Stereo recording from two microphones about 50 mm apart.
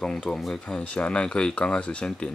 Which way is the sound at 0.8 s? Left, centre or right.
Left.